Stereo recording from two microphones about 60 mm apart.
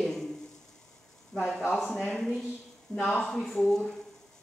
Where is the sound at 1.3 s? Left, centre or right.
Centre.